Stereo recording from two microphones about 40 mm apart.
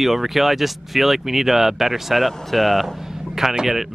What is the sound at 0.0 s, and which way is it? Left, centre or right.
Speech, centre.